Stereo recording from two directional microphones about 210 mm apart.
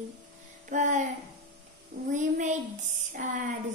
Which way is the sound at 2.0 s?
35° right (ahead or behind).